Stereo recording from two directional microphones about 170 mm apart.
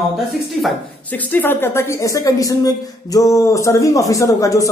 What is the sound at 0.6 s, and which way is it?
Speech, 5° left (ahead or behind).